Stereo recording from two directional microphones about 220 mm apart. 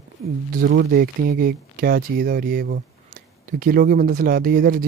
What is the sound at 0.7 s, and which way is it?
Speech, 50° right (ahead or behind).